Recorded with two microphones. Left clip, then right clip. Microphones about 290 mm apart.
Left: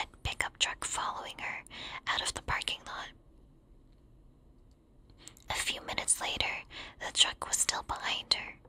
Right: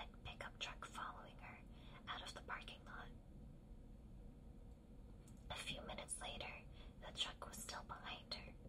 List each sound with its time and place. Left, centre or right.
0.0 s whispering: left
5.5 s whispering: left